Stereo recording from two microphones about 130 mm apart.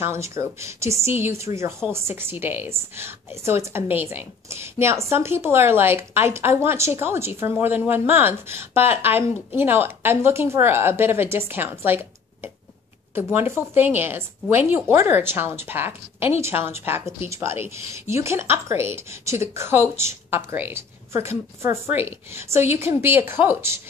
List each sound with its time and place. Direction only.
0.0 s speech: 20° right (ahead or behind)
13.1 s a woman's voice: 15° right (ahead or behind)